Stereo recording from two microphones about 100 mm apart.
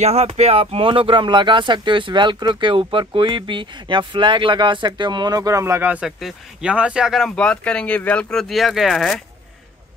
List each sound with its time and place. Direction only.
0.0 s speech: 90° right; by 5.9 s 30° right (ahead or behind)
5.9 s speech: 10° right (ahead or behind)
7.3 s speech: 10° left (ahead or behind)